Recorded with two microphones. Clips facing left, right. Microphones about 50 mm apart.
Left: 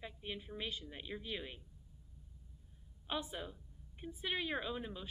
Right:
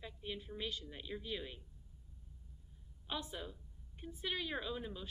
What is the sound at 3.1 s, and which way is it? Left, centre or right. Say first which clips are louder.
A woman's voice: left 2 dB; centre.